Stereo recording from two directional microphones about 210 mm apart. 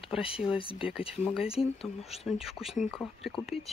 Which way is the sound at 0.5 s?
25° left (ahead or behind).